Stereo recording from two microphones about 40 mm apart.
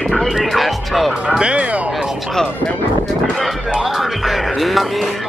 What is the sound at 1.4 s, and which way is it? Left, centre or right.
Speech, right.